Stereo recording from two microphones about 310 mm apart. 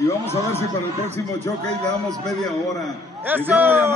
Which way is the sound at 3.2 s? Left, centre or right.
Centre.